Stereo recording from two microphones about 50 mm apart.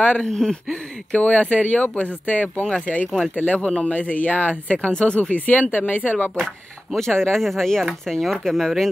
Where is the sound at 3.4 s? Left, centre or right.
Left.